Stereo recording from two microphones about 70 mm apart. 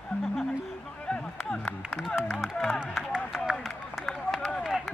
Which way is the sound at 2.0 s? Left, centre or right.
Centre.